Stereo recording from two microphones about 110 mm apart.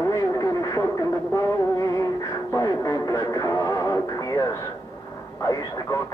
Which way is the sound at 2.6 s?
30° left (ahead or behind).